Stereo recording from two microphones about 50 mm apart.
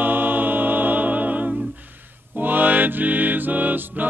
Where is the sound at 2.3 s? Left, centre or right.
Right.